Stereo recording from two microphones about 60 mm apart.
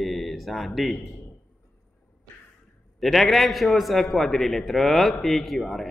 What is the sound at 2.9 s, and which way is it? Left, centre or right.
Mantra, centre.